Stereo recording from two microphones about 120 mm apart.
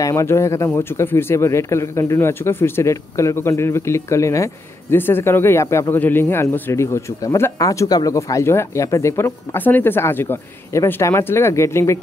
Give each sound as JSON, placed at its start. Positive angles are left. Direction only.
{"t": 0.0, "sound": "speech", "side_deg": 25}